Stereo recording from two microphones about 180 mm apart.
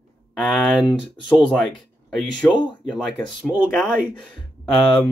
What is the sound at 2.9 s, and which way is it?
Speech, centre (ahead or behind).